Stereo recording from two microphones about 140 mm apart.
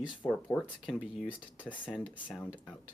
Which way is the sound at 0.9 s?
5° right (ahead or behind).